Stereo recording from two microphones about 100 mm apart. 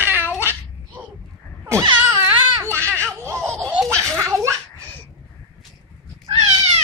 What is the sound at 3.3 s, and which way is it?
Laughter, 25° right (ahead or behind).